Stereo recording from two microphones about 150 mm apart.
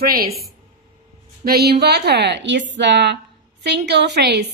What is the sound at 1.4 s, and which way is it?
Speech, 90° right.